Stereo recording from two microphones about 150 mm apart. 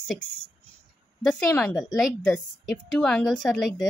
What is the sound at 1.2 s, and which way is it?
Speech, 10° left (ahead or behind).